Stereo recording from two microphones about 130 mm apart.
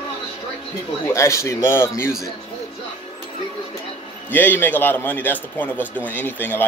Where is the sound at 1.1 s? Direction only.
20° left (ahead or behind).